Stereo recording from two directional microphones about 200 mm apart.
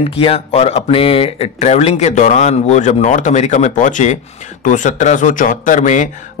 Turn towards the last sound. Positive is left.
turn(degrees=40)  # may be behind; listen again after turning